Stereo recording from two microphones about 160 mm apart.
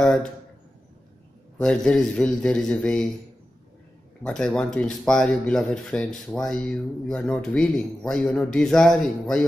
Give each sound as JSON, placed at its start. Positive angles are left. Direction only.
{"t": 0.0, "sound": "a sound", "side_deg": 5}
{"t": 1.6, "sound": "speech", "side_deg": 5}
{"t": 4.2, "sound": "speech", "side_deg": 5}